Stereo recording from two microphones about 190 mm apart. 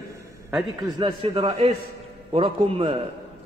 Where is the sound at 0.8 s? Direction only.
20° right (ahead or behind).